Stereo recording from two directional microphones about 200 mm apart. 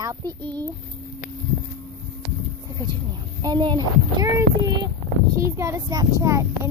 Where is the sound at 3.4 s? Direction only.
20° right (ahead or behind).